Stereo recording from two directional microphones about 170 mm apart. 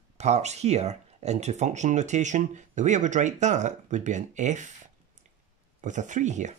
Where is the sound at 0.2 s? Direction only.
40° right (ahead or behind).